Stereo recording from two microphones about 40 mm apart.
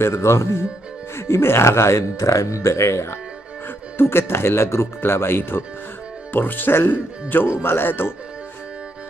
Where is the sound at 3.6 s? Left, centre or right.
Left.